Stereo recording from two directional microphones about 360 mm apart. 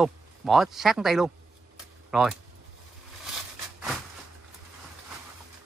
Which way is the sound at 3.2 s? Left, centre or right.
Centre.